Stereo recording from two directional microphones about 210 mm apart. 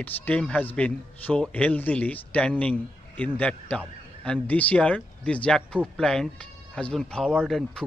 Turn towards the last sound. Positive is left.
turn(degrees=0)  # may be behind; listen again after turning